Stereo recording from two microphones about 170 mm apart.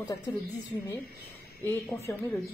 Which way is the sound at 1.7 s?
15° left (ahead or behind).